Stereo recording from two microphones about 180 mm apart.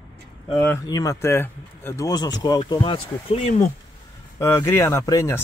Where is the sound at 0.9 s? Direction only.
20° left (ahead or behind).